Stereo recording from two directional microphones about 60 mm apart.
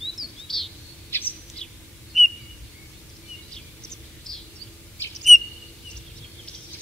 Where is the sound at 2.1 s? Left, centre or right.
Centre.